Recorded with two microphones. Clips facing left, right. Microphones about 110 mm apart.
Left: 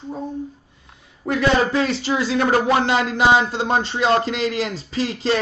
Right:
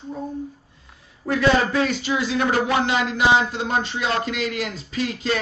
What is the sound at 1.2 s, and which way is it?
A man's voice, 30° left (ahead or behind).